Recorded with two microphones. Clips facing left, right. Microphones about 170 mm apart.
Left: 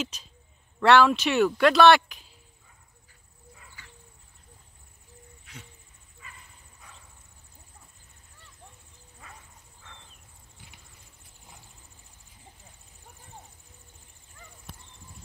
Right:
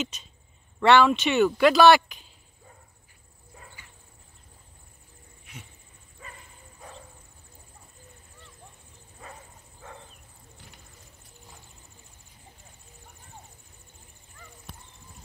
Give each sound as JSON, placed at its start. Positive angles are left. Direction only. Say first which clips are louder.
{"t": 0.0, "sound": "speech", "louder": "right 1 dB", "side_deg": 0}
{"t": 5.4, "sound": "a sound", "louder": "right 2 dB", "side_deg": -20}
{"t": 6.2, "sound": "bow-wow", "louder": "right 5 dB", "side_deg": -40}